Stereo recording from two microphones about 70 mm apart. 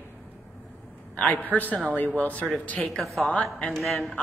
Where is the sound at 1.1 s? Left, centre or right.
Left.